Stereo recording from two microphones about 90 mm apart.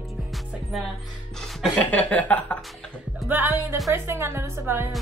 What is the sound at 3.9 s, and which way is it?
Speech, 30° right (ahead or behind).